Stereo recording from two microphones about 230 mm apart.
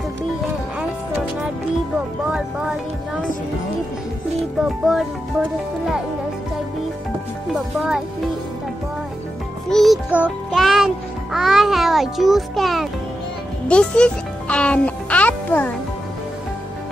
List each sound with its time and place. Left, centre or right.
0.7 s music: centre
2.3 s a child's voice: centre
4.6 s a child's voice: centre
7.5 s a child's voice: centre
9.7 s a child's voice: centre
13.7 s music: centre